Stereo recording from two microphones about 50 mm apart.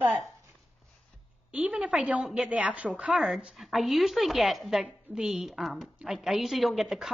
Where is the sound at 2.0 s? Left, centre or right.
Right.